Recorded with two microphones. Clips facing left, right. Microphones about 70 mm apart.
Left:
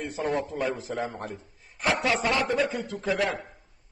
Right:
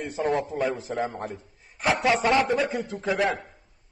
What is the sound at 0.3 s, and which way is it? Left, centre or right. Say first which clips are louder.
A man's voice: right 2 dB; centre.